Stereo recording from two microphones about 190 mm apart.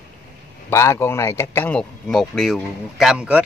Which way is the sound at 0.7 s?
15° left (ahead or behind).